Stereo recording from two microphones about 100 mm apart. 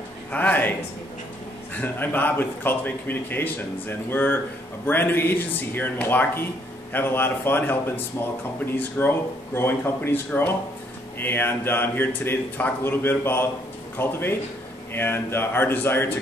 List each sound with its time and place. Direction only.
0.3 s a man's voice: 15° left (ahead or behind)
1.8 s speech: 20° left (ahead or behind)